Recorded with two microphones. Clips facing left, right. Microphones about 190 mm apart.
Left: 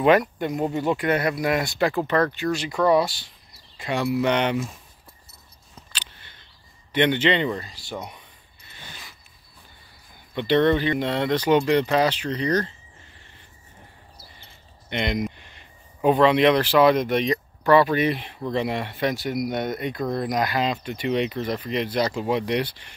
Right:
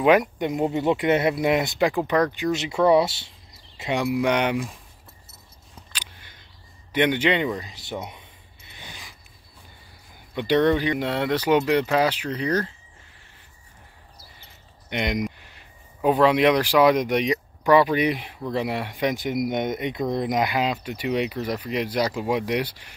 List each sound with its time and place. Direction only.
0.2 s speech: 20° right (ahead or behind)
5.9 s a sound: 10° right (ahead or behind)
6.9 s speech: 10° right (ahead or behind)
7.7 s speech: 20° right (ahead or behind)
8.7 s mechanisms: 15° right (ahead or behind)
10.3 s speech: 10° right (ahead or behind)
14.9 s speech: 10° right (ahead or behind)